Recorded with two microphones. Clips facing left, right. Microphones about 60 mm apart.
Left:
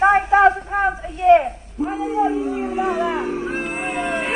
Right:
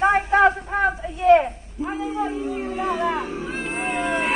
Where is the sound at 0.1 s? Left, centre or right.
Centre.